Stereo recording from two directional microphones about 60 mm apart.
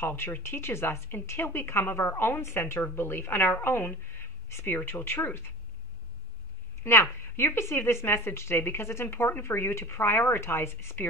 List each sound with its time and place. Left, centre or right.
0.0 s a woman's voice: left
6.8 s a woman's voice: left